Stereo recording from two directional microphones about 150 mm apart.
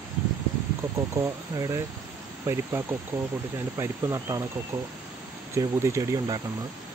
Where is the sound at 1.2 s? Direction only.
20° right (ahead or behind).